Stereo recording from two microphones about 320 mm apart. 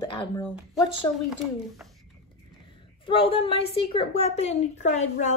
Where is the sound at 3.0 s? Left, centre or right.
Centre.